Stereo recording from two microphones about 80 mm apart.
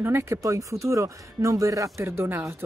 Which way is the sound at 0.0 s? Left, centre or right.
Right.